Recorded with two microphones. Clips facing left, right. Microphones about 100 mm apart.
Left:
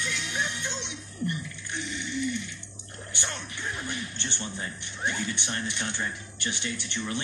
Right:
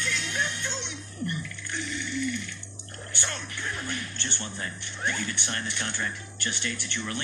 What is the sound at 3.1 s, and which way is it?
Music, 20° left (ahead or behind).